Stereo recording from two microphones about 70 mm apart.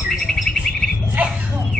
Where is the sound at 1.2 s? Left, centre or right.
Right.